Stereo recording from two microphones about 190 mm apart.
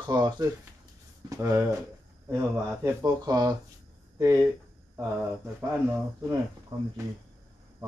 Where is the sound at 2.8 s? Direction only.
20° right (ahead or behind).